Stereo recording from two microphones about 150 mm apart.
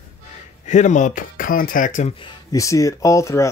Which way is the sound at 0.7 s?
50° left (ahead or behind).